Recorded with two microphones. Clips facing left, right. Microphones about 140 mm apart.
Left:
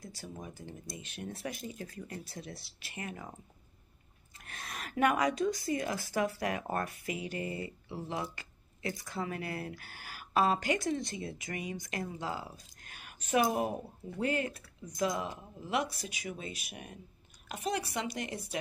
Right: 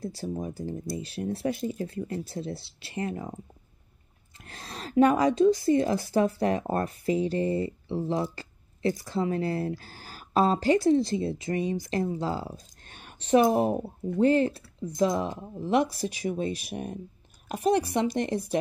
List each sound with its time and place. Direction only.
0.0 s a woman's voice: 35° right (ahead or behind)
4.4 s a woman's voice: 30° right (ahead or behind)